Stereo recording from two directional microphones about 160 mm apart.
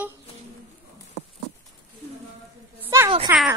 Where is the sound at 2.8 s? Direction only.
15° right (ahead or behind).